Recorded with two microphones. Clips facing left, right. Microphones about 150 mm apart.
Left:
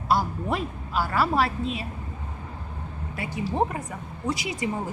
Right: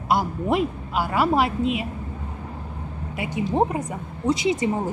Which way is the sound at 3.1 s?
20° right (ahead or behind).